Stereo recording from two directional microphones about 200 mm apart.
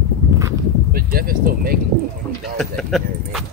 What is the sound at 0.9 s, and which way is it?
Speech, 45° right (ahead or behind).